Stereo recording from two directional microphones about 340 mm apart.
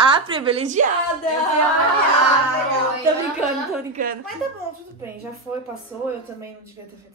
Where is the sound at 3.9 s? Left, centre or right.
Right.